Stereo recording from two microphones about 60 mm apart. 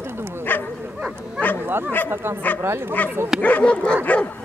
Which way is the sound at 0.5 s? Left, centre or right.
Left.